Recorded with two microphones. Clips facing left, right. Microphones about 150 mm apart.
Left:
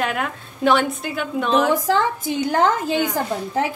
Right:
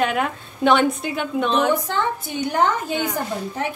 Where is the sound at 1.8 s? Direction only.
90° left.